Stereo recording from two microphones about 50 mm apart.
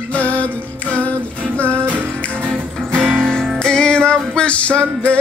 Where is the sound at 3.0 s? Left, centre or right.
Centre.